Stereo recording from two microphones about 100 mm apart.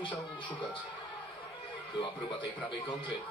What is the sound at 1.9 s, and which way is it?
A man's voice, 50° left (ahead or behind).